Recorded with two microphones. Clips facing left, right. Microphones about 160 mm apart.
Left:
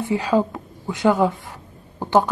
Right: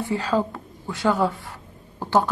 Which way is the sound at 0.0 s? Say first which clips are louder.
Left 3 dB; 15° left (ahead or behind).